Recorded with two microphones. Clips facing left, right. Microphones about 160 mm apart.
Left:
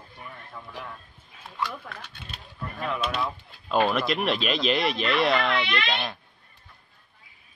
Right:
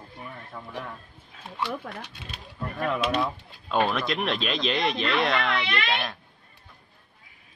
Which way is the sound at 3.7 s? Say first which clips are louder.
Left 2 dB; 5° left (ahead or behind).